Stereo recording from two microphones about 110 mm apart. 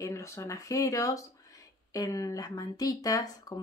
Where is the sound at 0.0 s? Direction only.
25° left (ahead or behind).